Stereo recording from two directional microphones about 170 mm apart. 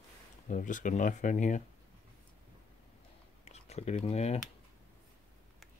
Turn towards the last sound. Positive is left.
turn(degrees=35)  # may be behind; listen again after turning